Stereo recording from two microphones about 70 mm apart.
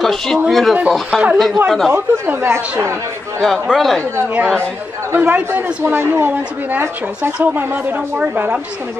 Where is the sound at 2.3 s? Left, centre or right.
Right.